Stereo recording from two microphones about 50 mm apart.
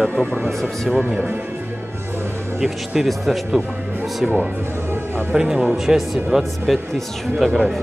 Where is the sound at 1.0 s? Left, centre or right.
Right.